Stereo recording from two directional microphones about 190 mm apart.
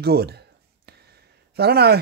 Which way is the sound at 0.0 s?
55° right (ahead or behind).